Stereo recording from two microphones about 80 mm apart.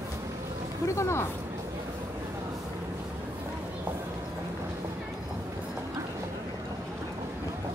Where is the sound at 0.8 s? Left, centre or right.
Left.